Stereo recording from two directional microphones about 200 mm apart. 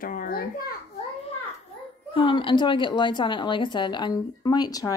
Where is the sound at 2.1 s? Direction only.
25° left (ahead or behind).